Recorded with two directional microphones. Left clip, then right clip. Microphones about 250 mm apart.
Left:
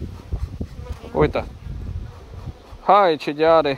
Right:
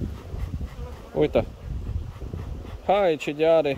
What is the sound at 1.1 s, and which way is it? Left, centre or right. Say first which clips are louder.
Speech: left 4 dB; left.